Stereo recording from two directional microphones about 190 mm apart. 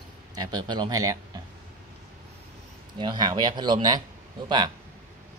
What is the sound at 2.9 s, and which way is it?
Speech, 25° right (ahead or behind).